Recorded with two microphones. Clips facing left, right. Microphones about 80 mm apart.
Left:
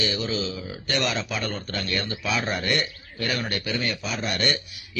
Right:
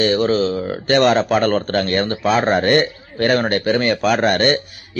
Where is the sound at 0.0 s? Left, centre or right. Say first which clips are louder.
Right 12 dB; right.